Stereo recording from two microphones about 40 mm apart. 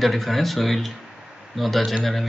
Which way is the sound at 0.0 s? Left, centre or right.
Centre.